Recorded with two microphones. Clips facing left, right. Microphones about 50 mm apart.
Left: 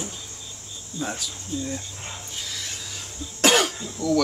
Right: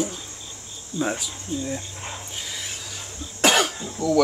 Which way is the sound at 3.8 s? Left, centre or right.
Centre.